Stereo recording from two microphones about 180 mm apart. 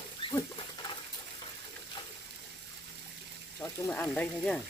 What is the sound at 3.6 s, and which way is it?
Frying, 20° left (ahead or behind).